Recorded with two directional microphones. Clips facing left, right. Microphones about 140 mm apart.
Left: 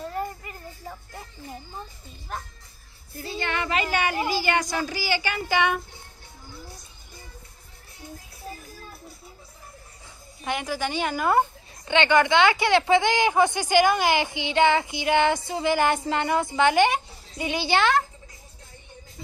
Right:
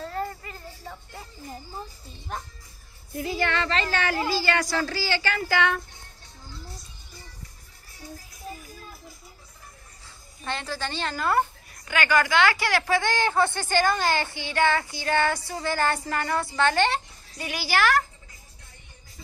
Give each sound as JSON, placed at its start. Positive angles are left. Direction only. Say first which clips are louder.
{"t": 0.0, "sound": "music", "louder": "even", "side_deg": 15}
{"t": 2.3, "sound": "speech", "louder": "even", "side_deg": 0}
{"t": 3.2, "sound": "a child's voice", "louder": "right 5 dB", "side_deg": 30}
{"t": 3.4, "sound": "a woman's voice", "louder": "left 2 dB", "side_deg": 15}
{"t": 10.4, "sound": "a woman's voice", "louder": "left 4 dB", "side_deg": 15}